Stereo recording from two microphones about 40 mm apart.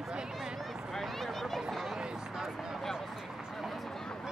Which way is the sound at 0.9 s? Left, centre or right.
Centre.